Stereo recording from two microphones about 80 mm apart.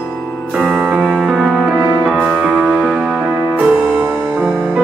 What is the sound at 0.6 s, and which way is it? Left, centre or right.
Music, centre.